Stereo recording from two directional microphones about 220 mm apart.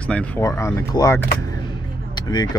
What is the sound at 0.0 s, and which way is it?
Speech, 5° left (ahead or behind).